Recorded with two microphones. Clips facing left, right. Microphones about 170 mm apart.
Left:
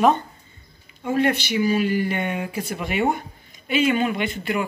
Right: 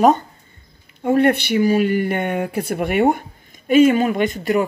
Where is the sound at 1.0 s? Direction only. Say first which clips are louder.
Right 6 dB; 55° right (ahead or behind).